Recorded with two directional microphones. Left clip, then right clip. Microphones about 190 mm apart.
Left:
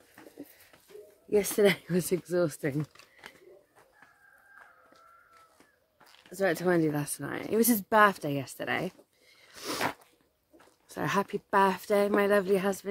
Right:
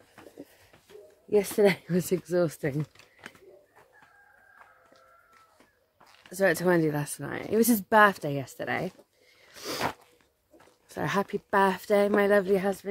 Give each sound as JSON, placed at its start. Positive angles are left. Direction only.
{"t": 1.3, "sound": "speech", "side_deg": 0}
{"t": 6.3, "sound": "speech", "side_deg": -15}
{"t": 9.5, "sound": "a sound", "side_deg": 5}
{"t": 10.6, "sound": "speech", "side_deg": 0}